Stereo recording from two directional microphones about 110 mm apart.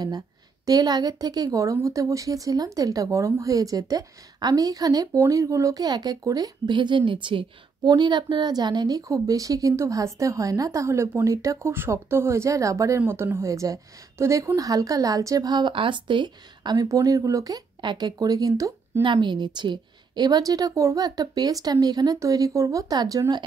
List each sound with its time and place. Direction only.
0.7 s speech: 35° right (ahead or behind)
16.7 s speech: 30° right (ahead or behind)